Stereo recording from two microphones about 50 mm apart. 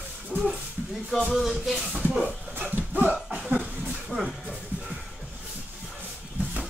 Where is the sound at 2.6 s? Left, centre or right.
Right.